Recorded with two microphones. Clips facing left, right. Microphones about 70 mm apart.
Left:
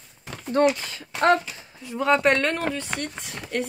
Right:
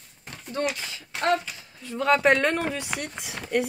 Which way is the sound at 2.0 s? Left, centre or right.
Centre.